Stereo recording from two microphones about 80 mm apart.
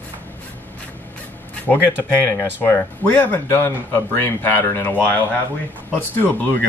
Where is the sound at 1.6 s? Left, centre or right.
Left.